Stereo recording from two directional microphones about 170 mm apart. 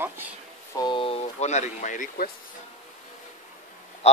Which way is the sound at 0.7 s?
30° left (ahead or behind).